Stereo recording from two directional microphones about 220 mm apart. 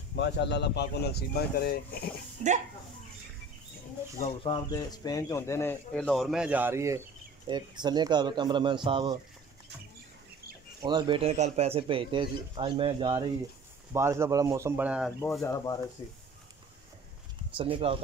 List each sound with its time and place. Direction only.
0.1 s speech: 50° left (ahead or behind)
4.2 s speech: 25° left (ahead or behind); by 9.2 s 20° right (ahead or behind)
10.8 s speech: 20° right (ahead or behind); by 15.1 s 5° right (ahead or behind)
15.4 s speech: 15° left (ahead or behind)
17.6 s speech: 25° right (ahead or behind)